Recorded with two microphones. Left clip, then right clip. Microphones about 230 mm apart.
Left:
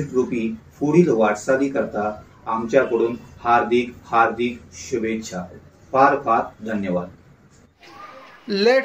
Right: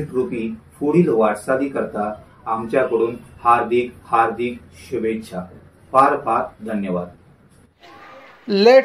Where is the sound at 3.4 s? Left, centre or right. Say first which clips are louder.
Right 2 dB; centre.